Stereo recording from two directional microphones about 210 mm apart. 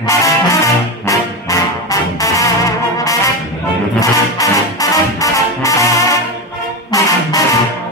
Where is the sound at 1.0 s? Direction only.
15° left (ahead or behind).